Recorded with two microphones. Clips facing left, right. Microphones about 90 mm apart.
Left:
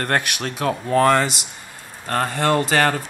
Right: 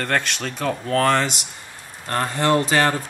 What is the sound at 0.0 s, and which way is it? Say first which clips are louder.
Speech: left 1 dB; 10° left (ahead or behind).